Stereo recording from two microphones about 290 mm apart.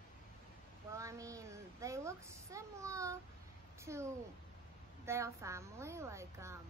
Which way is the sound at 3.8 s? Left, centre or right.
Centre.